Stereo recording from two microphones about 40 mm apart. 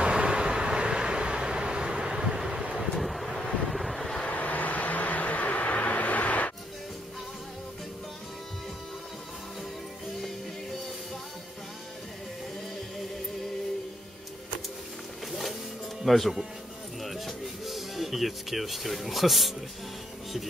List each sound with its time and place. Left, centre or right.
0.0 s vehicle: right; by 3.4 s centre
3.6 s wind noise: centre
4.3 s vehicle: left
16.1 s speech: centre
17.0 s music: centre